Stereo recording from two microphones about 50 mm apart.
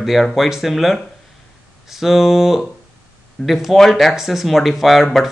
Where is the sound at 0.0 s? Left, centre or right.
Centre.